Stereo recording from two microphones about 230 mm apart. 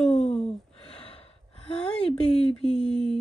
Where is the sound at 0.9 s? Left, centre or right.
Left.